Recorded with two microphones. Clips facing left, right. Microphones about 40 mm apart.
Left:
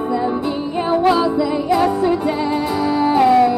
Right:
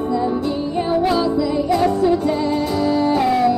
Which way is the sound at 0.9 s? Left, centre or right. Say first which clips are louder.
Left 4 dB; left.